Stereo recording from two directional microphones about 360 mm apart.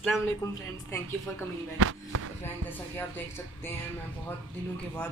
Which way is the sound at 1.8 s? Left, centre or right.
Right.